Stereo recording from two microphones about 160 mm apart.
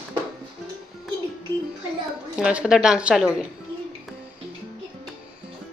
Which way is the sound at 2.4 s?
5° right (ahead or behind).